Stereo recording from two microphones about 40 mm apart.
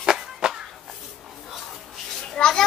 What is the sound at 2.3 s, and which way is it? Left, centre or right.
Children playing, centre.